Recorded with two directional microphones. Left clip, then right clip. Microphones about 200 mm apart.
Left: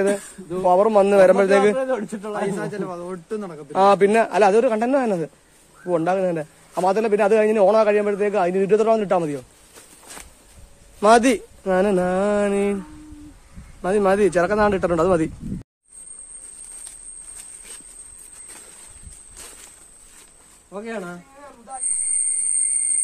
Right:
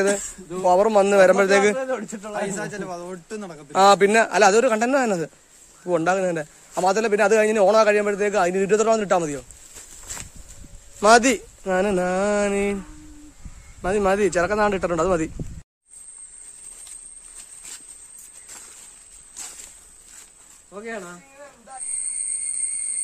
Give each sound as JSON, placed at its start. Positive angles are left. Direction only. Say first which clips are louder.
{"t": 0.1, "sound": "a man's voice", "louder": "left 1 dB", "side_deg": -25}
{"t": 2.3, "sound": "a man's voice", "louder": "left 2 dB", "side_deg": -45}
{"t": 3.7, "sound": "a man's voice", "louder": "even", "side_deg": -20}
{"t": 11.0, "sound": "speech", "louder": "even", "side_deg": -15}
{"t": 20.7, "sound": "speech", "louder": "left 2 dB", "side_deg": 35}